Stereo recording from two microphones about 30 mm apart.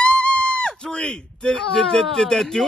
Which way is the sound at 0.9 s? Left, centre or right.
Left.